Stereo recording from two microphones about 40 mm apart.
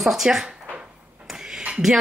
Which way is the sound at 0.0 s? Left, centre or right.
Centre.